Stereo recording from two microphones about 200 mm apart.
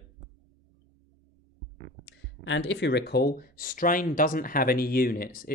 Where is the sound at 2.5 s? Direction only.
65° left (ahead or behind).